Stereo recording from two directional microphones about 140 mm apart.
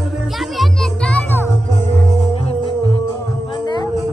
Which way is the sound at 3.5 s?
30° left (ahead or behind).